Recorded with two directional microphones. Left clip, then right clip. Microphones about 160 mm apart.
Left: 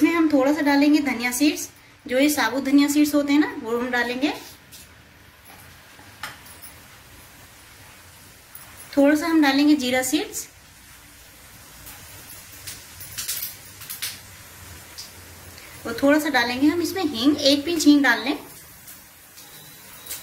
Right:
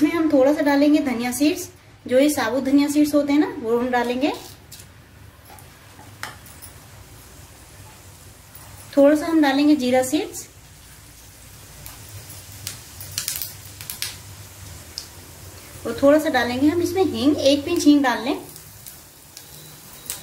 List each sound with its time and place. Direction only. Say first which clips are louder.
0.3 s a woman's voice: right 3 dB; 20° right (ahead or behind)
8.9 s a woman's voice: right 3 dB; 20° right (ahead or behind)
16.0 s a woman's voice: right 3 dB; 20° right (ahead or behind)